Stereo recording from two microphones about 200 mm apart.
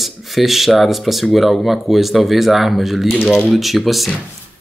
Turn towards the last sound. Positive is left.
turn(degrees=0)  # may be behind; listen again after turning